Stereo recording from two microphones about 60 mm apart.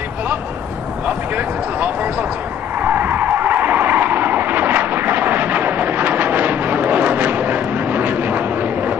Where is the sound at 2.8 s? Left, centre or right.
Right.